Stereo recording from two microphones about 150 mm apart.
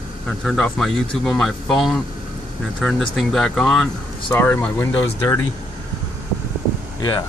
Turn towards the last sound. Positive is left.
turn(degrees=30)  # may be behind; listen again after turning